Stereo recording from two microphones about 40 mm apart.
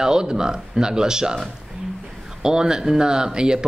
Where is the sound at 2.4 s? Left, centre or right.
Centre.